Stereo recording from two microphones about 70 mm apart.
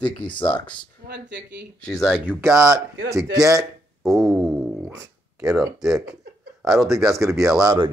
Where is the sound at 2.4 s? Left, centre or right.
Right.